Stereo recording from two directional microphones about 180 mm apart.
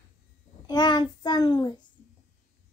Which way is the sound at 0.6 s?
25° left (ahead or behind).